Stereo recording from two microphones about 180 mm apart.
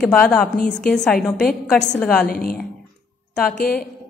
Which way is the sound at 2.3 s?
55° left (ahead or behind).